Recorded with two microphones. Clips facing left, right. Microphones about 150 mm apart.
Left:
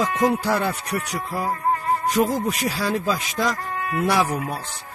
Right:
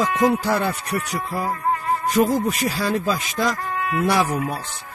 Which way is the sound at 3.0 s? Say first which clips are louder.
Right 1 dB; 5° right (ahead or behind).